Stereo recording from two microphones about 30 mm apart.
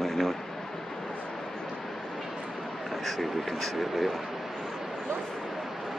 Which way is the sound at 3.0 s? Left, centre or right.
Centre.